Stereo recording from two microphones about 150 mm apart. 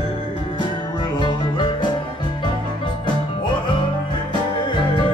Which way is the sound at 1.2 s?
30° left (ahead or behind).